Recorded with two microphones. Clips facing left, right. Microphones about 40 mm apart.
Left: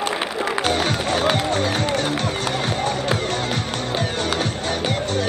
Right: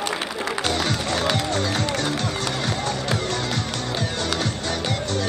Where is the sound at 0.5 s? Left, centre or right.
Left.